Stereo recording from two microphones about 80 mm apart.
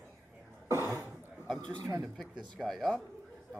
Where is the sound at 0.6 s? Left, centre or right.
Right.